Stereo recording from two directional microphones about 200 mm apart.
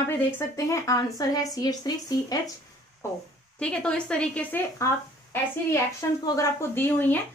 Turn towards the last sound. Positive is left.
turn(degrees=10)  # may be behind; listen again after turning